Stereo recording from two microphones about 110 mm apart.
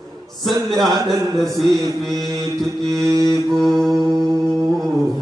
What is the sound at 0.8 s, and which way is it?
Music, 30° right (ahead or behind).